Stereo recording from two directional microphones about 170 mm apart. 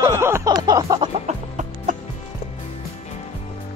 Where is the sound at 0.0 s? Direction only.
15° right (ahead or behind).